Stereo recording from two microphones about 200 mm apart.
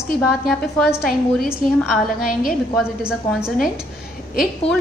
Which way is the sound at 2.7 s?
Centre (ahead or behind).